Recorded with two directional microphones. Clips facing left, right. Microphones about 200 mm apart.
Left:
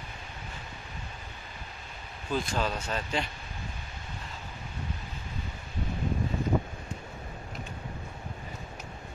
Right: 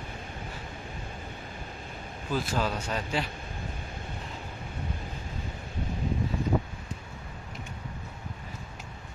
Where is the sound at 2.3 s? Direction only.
5° right (ahead or behind).